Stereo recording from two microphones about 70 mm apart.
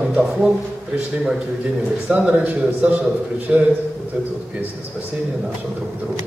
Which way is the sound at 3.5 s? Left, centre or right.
Centre.